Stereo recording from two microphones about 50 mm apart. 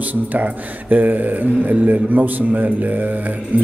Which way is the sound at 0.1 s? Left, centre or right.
Right.